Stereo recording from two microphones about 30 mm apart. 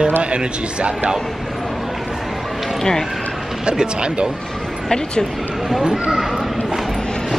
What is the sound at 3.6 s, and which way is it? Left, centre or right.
Speech, right.